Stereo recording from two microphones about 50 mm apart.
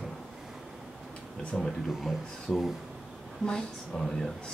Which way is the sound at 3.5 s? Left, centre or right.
Centre.